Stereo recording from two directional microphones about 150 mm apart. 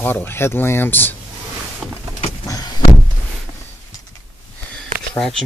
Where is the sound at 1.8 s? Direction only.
Centre (ahead or behind).